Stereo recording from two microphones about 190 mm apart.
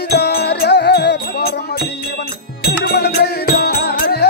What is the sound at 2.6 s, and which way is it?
Music, 55° left (ahead or behind).